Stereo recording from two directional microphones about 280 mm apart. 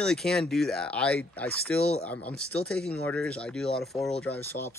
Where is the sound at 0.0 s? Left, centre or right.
Centre.